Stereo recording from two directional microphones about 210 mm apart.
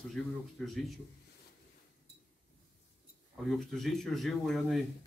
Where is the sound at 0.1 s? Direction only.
Centre (ahead or behind).